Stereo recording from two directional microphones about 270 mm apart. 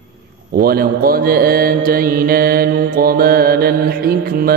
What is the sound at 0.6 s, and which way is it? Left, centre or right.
Mantra, right.